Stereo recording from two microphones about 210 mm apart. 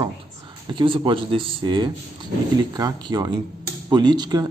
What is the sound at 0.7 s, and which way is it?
A man's voice, 25° right (ahead or behind).